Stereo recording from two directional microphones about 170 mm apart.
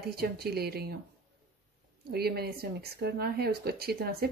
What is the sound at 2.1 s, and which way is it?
Speech, 65° right (ahead or behind).